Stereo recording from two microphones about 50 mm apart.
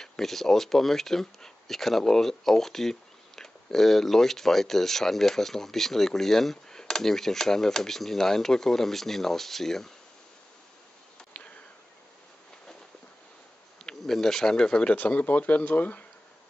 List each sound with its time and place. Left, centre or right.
0.0 s speech: centre
13.8 s speech: centre; by 16.0 s left